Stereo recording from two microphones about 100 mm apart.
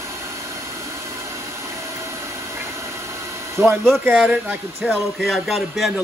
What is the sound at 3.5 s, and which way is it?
Speech, 25° right (ahead or behind).